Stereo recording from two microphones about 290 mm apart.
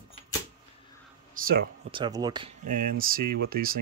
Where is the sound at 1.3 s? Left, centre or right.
Right.